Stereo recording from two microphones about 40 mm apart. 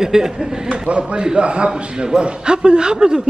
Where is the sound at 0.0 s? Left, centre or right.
Centre.